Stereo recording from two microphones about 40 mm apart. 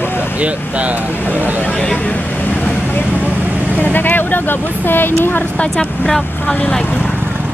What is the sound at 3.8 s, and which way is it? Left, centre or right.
Speech, left.